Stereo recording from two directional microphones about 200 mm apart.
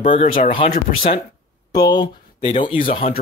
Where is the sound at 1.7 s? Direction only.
20° left (ahead or behind).